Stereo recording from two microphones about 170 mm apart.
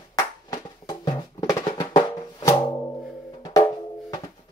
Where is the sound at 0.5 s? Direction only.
25° left (ahead or behind).